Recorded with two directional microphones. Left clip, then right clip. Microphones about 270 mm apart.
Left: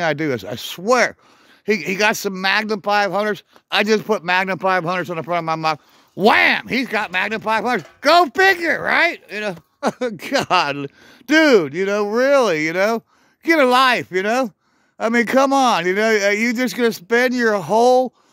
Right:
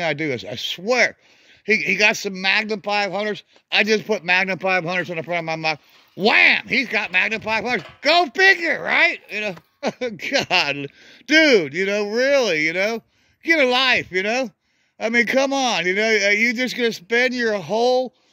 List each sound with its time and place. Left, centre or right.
0.0 s speech: left